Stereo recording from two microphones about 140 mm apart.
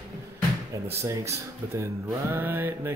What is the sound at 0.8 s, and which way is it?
Speech, 20° right (ahead or behind).